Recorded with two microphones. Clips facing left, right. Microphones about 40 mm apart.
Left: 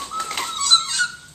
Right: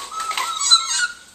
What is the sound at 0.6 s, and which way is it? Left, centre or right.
Dog, centre.